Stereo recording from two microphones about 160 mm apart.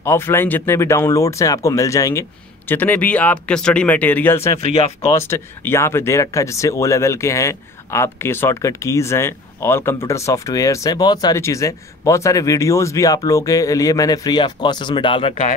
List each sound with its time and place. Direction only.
0.0 s speech: 15° left (ahead or behind)
4.6 s speech: 40° left (ahead or behind)
5.1 s speech: 15° left (ahead or behind); by 15.3 s 30° left (ahead or behind)